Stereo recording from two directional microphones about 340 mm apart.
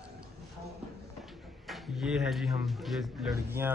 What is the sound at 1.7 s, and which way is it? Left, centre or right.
A man's voice, centre.